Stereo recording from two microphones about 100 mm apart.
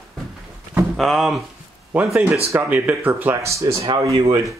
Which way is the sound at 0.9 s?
Centre (ahead or behind).